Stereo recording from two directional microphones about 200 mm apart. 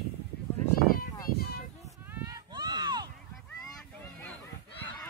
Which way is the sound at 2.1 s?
20° right (ahead or behind).